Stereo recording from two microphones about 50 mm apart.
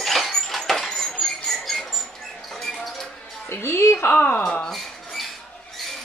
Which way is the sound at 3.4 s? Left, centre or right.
Left.